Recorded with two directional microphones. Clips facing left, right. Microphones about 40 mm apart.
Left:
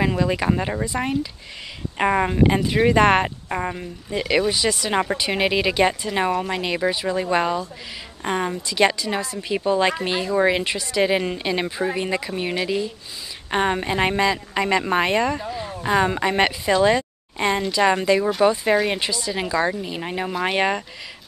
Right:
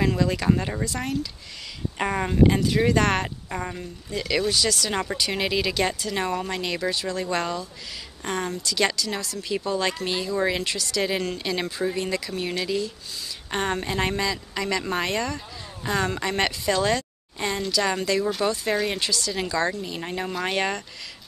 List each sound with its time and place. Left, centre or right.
0.0 s speech: centre